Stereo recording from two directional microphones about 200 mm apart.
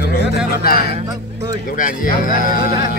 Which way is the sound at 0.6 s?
50° left (ahead or behind).